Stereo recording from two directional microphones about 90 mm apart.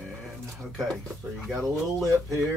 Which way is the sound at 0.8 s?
Centre (ahead or behind).